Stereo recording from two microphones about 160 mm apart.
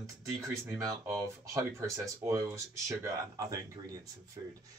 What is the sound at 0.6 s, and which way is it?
Speech, 20° right (ahead or behind).